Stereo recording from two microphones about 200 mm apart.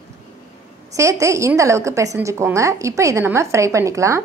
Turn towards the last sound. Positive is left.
turn(degrees=-15)  # may be behind; listen again after turning